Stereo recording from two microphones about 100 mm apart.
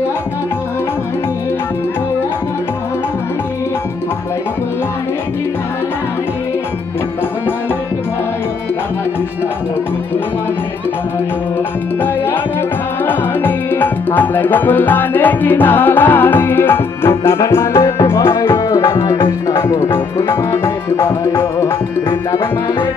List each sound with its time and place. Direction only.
13.0 s music: 20° left (ahead or behind)